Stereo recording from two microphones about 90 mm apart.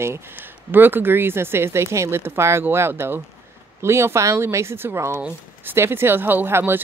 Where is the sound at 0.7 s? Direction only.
20° right (ahead or behind).